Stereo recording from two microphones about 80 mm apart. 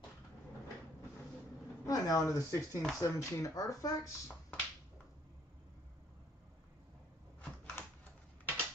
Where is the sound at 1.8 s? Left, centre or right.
Left.